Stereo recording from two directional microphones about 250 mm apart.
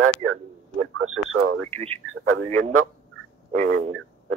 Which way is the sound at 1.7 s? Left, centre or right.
Right.